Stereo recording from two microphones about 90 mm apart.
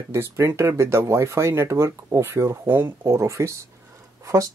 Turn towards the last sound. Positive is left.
turn(degrees=-35)  # may be behind; listen again after turning